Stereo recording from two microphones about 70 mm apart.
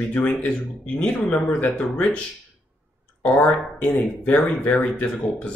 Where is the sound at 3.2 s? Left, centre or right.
Centre.